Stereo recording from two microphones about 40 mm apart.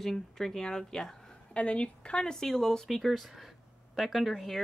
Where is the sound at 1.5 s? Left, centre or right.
Left.